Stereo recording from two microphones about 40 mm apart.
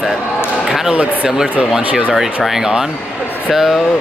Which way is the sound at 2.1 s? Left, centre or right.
Centre.